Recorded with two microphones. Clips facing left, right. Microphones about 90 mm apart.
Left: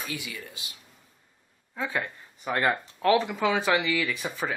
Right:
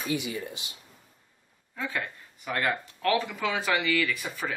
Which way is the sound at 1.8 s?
25° left (ahead or behind).